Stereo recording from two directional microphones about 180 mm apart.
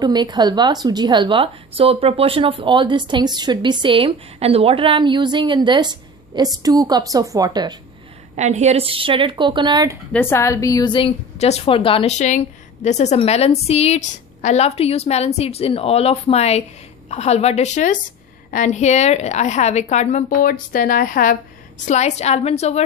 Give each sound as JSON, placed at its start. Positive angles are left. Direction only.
{"t": 0.0, "sound": "a woman's voice", "side_deg": -20}
{"t": 8.4, "sound": "a woman's voice", "side_deg": -40}
{"t": 10.1, "sound": "a woman's voice", "side_deg": 15}